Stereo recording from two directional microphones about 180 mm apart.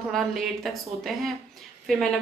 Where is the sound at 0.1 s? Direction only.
Centre (ahead or behind).